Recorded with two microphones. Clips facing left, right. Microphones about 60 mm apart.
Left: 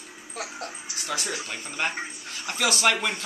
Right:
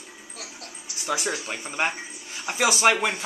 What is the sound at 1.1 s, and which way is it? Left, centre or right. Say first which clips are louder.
A man's voice: right 4 dB; centre.